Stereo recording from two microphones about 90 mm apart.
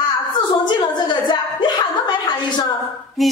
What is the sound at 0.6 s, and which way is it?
A woman's voice, 60° left (ahead or behind).